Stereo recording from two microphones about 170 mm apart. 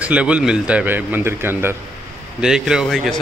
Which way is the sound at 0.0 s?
5° right (ahead or behind).